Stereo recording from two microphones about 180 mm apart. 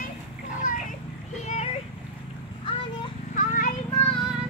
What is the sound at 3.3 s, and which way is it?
Children playing, 50° left (ahead or behind).